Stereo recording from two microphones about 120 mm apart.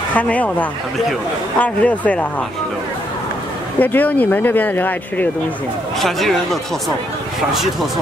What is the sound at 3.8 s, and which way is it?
Speech, 15° left (ahead or behind).